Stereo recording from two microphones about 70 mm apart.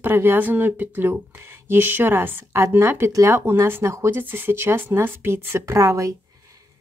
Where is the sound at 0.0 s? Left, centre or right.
Right.